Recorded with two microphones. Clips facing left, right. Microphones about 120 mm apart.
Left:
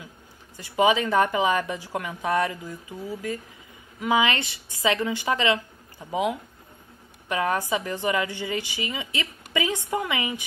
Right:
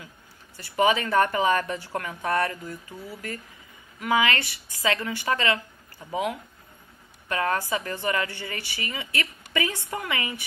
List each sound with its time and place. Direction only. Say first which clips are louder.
0.6 s a woman's voice: left 2 dB; 15° left (ahead or behind)